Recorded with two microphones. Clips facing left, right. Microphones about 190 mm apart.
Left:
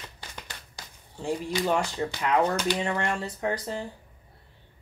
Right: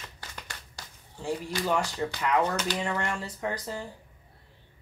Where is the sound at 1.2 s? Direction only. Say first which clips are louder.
Left 3 dB; 15° left (ahead or behind).